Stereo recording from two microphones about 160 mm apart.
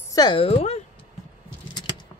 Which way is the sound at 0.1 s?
30° left (ahead or behind).